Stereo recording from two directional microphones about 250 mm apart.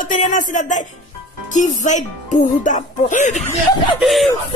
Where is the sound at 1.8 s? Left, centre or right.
Left.